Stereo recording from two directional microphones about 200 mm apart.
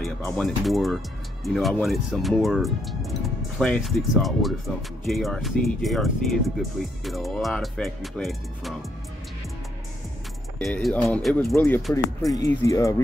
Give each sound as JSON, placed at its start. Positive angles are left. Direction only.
{"t": 0.0, "sound": "speech", "side_deg": 0}
{"t": 10.6, "sound": "speech", "side_deg": 0}